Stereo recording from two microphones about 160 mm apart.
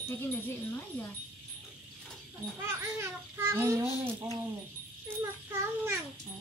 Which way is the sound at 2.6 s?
15° right (ahead or behind).